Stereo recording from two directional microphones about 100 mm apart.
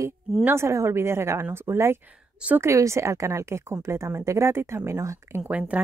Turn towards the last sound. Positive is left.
turn(degrees=-15)  # may be behind; listen again after turning